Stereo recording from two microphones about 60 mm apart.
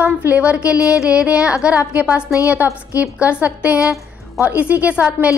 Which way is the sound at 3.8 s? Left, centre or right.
Left.